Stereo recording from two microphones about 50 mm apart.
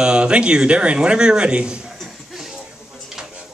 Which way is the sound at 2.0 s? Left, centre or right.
Centre.